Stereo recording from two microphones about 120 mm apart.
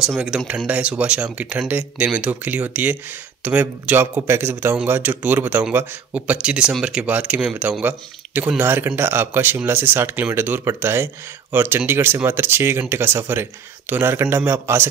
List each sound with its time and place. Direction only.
0.0 s speech: 5° right (ahead or behind)